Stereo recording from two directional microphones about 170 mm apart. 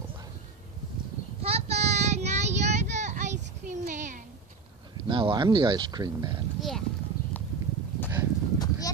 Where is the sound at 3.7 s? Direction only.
45° right (ahead or behind).